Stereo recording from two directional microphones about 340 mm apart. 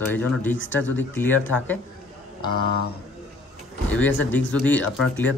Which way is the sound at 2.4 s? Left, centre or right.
Left.